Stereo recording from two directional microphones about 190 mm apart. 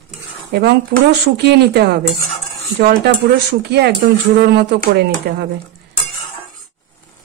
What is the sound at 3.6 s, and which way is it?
Speech, 60° right (ahead or behind).